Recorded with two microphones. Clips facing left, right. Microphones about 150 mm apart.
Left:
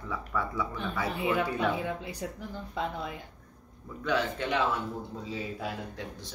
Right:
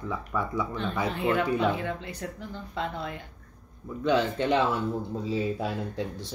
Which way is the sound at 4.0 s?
25° right (ahead or behind).